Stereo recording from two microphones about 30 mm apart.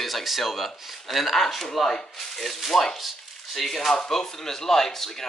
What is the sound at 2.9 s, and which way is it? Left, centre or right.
Chopping, centre.